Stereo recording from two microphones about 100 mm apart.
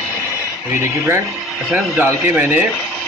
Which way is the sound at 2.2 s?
15° right (ahead or behind).